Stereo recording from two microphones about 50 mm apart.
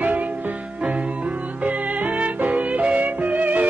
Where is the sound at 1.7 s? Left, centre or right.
Right.